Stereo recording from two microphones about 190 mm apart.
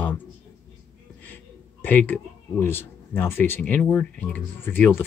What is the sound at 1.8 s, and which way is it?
Speech, 10° left (ahead or behind).